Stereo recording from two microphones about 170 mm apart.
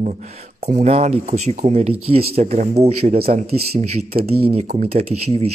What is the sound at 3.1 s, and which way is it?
Speech, 55° right (ahead or behind).